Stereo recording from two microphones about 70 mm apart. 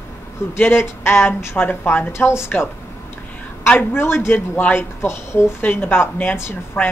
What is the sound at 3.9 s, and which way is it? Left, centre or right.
A woman's voice, left.